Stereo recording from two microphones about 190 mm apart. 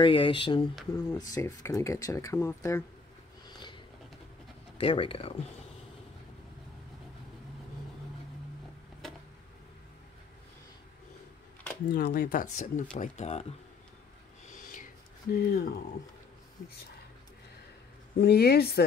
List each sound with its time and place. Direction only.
0.0 s speech: 25° left (ahead or behind)
3.5 s a sound: 25° left (ahead or behind)
4.7 s speech: 30° left (ahead or behind)
11.9 s speech: 50° left (ahead or behind); by 13.6 s 35° left (ahead or behind)
14.5 s a sound: 45° left (ahead or behind)
15.3 s speech: 55° left (ahead or behind)
18.2 s a woman's voice: 55° left (ahead or behind)